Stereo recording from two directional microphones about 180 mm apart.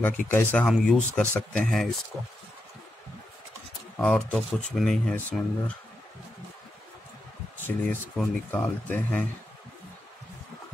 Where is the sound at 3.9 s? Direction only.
5° left (ahead or behind).